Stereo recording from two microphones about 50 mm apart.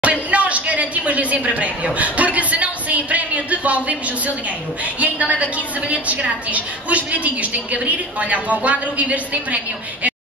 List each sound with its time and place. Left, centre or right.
0.0 s a sound: right
2.0 s speech: right
5.0 s a woman's voice: right